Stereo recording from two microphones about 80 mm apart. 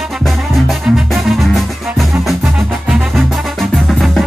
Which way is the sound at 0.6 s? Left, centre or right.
Centre.